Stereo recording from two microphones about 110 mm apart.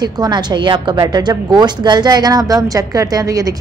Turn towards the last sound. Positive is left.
turn(degrees=-30)  # may be behind; listen again after turning